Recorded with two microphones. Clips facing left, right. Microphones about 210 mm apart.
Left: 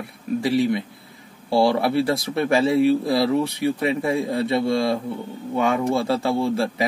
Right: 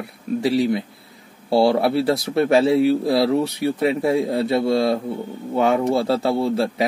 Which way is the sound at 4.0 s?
25° right (ahead or behind).